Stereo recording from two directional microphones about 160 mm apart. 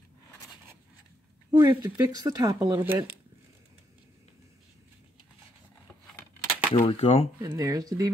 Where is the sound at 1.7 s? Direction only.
25° right (ahead or behind).